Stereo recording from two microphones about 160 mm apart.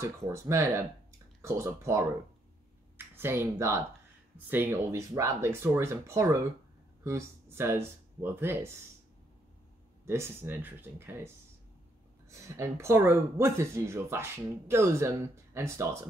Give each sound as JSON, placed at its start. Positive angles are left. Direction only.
{"t": 0.0, "sound": "speech", "side_deg": -15}
{"t": 3.2, "sound": "speech", "side_deg": -15}
{"t": 10.0, "sound": "speech", "side_deg": -15}
{"t": 12.3, "sound": "speech", "side_deg": -20}